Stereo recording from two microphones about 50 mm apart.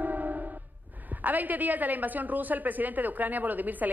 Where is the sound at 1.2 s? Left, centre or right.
Right.